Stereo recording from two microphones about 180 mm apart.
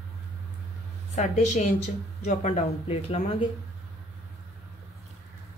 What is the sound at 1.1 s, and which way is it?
Speech, 40° left (ahead or behind).